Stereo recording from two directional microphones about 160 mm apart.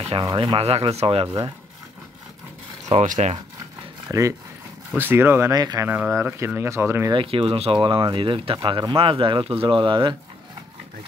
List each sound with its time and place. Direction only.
0.2 s speech: 25° right (ahead or behind)
2.9 s speech: 45° right (ahead or behind)
4.1 s speech: 20° right (ahead or behind)
5.9 s speech: 10° right (ahead or behind)
7.2 s speech: 35° right (ahead or behind)